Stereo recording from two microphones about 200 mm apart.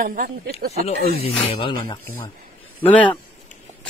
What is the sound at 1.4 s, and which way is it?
Speech, 25° left (ahead or behind).